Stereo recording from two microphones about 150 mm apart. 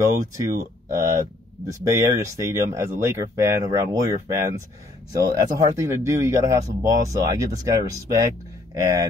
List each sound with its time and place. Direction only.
0.0 s speech: 20° right (ahead or behind)